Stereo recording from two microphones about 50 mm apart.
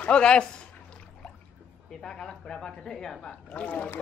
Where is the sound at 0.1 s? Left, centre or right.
Centre.